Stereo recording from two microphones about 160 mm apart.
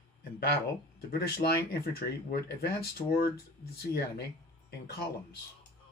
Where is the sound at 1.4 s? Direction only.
75° left (ahead or behind).